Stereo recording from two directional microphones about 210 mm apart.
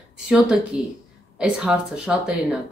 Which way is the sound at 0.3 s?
5° right (ahead or behind).